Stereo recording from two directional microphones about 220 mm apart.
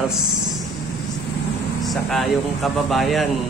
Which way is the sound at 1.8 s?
Centre (ahead or behind).